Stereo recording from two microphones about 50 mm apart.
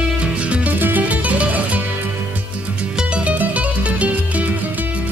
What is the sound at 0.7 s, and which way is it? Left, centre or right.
Music, right.